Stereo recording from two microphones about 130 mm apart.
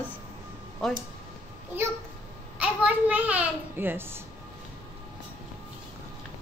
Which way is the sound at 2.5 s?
10° right (ahead or behind).